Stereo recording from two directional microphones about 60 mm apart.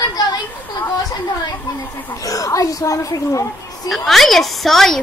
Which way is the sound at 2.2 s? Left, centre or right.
Left.